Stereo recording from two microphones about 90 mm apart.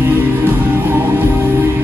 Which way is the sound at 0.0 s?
20° right (ahead or behind).